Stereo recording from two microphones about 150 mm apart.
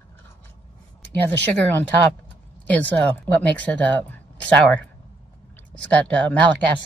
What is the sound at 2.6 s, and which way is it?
A woman's voice, 10° left (ahead or behind).